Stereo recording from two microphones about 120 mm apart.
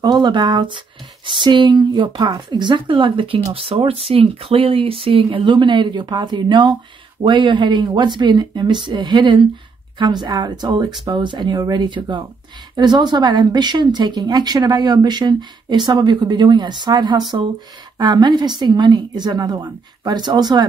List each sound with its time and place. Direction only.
0.0 s speech: 40° right (ahead or behind)